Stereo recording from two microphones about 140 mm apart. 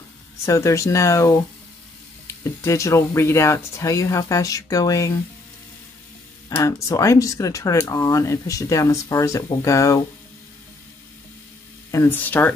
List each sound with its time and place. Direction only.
0.5 s speech: 20° left (ahead or behind)
6.5 s speech: 20° left (ahead or behind)
11.9 s speech: 15° left (ahead or behind)